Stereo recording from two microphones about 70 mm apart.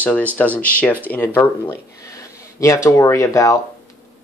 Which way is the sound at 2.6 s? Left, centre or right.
Left.